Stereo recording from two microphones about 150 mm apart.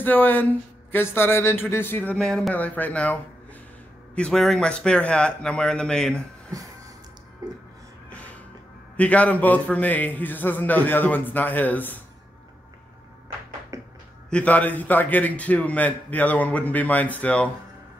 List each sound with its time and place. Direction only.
0.0 s a man's voice: 10° left (ahead or behind)
8.1 s music: 10° left (ahead or behind)
8.9 s speech: 10° left (ahead or behind)
13.7 s finger snapping: 20° right (ahead or behind)
14.3 s speech: 10° left (ahead or behind)